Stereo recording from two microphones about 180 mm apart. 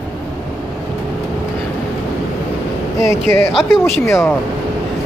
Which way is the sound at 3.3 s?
15° left (ahead or behind).